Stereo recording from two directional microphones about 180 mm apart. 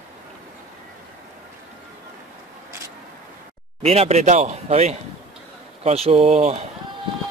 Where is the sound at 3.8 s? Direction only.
35° right (ahead or behind).